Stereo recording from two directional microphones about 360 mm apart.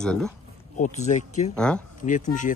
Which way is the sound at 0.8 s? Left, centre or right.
Centre.